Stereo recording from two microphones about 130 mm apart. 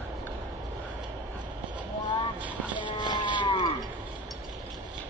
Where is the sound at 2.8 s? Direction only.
35° left (ahead or behind).